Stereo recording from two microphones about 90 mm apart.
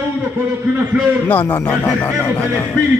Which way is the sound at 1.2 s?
20° left (ahead or behind).